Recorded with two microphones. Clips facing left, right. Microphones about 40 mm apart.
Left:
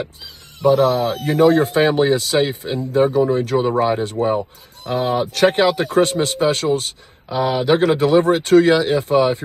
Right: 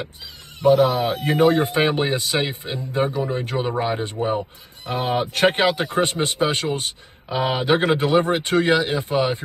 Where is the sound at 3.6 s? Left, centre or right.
Centre.